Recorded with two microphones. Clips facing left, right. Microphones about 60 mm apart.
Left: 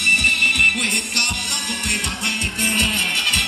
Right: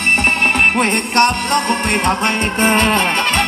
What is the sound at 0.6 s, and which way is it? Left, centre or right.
Music, right.